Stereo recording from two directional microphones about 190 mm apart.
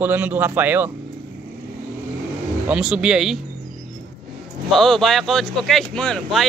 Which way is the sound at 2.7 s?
5° right (ahead or behind).